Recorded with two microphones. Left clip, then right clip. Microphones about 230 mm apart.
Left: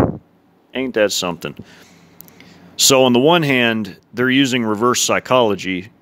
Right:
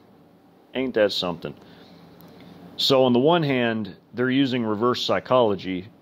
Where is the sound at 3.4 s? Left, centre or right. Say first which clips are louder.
Left 7 dB; left.